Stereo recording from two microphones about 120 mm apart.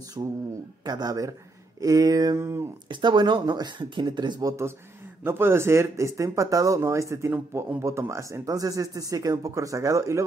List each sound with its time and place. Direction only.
0.2 s speech: 35° right (ahead or behind)
2.9 s speech: 40° right (ahead or behind)